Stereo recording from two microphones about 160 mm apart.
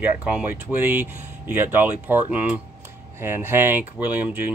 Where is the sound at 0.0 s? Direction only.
10° right (ahead or behind).